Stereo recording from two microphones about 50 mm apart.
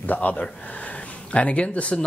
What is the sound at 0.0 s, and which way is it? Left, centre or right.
Speech, left.